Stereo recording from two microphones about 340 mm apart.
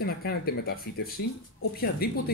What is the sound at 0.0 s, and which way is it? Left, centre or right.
Speech, left.